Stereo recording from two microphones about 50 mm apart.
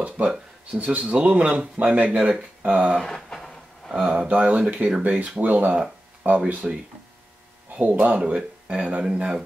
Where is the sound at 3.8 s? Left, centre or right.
Centre.